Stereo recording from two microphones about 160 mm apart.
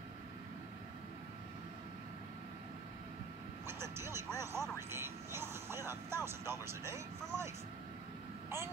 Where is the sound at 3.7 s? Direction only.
15° right (ahead or behind).